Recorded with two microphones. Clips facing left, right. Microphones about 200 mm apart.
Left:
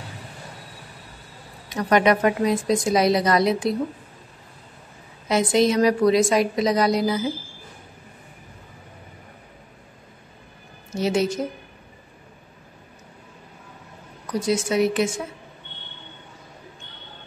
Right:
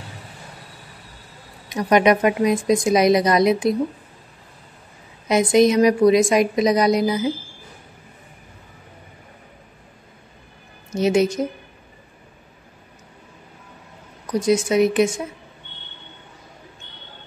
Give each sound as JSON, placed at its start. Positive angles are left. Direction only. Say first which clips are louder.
{"t": 1.7, "sound": "a woman's voice", "louder": "right 3 dB", "side_deg": -15}
{"t": 5.3, "sound": "a woman's voice", "louder": "right 4 dB", "side_deg": -15}
{"t": 11.0, "sound": "a woman's voice", "louder": "right 4 dB", "side_deg": -15}
{"t": 14.4, "sound": "a woman's voice", "louder": "right 4 dB", "side_deg": -20}